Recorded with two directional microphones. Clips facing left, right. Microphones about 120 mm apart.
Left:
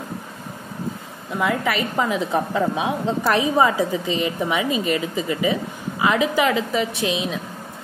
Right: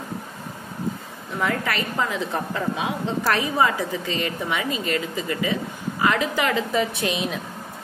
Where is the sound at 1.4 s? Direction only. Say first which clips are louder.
Left 3 dB; 10° left (ahead or behind).